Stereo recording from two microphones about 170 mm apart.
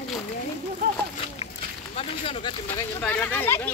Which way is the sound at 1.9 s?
35° left (ahead or behind).